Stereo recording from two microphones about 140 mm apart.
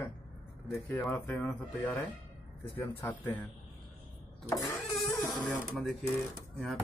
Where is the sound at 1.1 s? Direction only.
10° left (ahead or behind).